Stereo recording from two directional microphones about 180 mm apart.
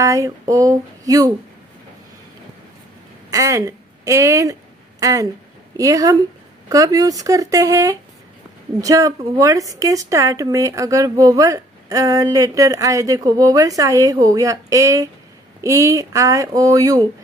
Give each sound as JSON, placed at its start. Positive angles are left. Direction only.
{"t": 0.0, "sound": "speech", "side_deg": -20}
{"t": 3.3, "sound": "speech", "side_deg": -20}